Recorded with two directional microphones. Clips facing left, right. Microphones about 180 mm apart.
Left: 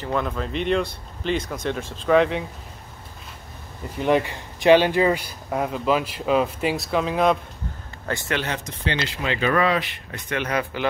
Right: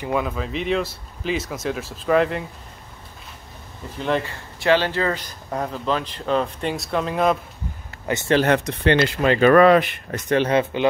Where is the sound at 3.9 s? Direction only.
10° left (ahead or behind).